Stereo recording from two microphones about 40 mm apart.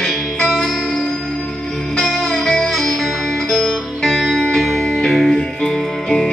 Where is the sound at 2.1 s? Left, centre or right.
Centre.